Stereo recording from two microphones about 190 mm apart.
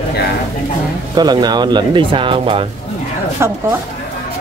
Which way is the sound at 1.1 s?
20° right (ahead or behind).